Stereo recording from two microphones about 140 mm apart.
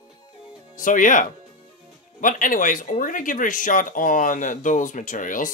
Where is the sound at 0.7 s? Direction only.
70° left (ahead or behind).